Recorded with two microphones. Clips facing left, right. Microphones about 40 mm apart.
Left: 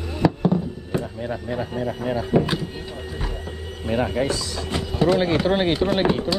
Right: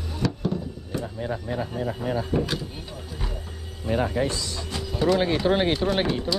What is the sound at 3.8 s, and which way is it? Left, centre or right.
Speech, left.